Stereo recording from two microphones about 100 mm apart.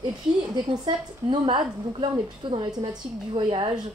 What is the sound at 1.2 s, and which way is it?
A woman's voice, 55° right (ahead or behind).